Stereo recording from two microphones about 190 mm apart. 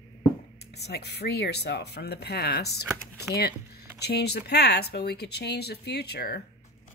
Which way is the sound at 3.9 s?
60° left (ahead or behind).